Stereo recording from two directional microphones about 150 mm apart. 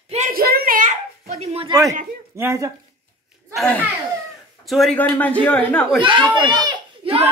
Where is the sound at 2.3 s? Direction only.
20° right (ahead or behind).